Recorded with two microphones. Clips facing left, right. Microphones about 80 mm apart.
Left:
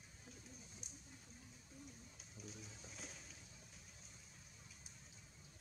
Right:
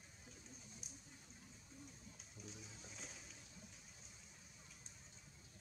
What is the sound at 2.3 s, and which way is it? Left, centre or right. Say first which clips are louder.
Pigeon: left 2 dB; centre.